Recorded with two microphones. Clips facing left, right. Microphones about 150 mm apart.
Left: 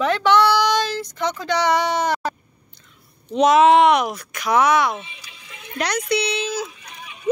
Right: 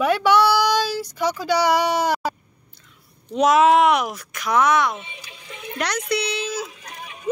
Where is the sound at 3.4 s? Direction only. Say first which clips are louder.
Left 2 dB; centre (ahead or behind).